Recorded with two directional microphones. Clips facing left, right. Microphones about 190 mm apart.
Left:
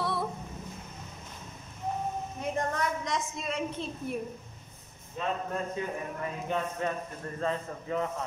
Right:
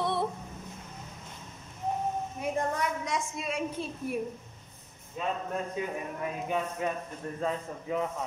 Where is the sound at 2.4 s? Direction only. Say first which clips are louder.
Even; 10° right (ahead or behind).